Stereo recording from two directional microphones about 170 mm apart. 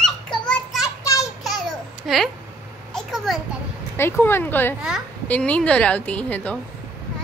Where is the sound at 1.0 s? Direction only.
20° left (ahead or behind).